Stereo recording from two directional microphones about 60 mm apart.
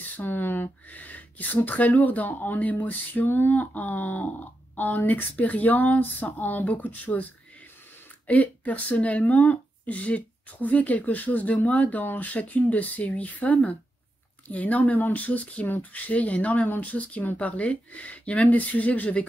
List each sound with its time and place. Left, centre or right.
0.0 s speech: left
8.3 s speech: left